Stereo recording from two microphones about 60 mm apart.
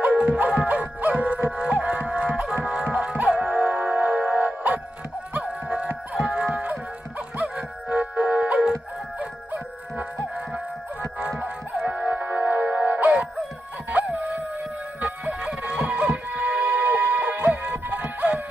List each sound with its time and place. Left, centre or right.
0.0 s music: centre
9.2 s dog: right
10.5 s music: centre